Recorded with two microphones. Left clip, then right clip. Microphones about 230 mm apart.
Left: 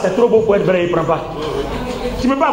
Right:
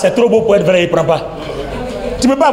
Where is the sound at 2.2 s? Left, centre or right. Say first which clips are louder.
Right 4 dB; right.